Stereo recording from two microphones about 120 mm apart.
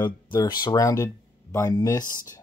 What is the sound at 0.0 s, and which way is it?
Speech, 40° left (ahead or behind).